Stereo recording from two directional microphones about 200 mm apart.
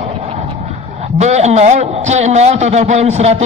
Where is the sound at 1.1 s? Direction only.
35° right (ahead or behind).